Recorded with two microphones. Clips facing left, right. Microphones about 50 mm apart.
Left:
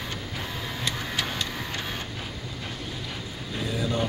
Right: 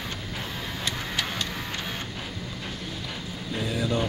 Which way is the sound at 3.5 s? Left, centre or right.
Right.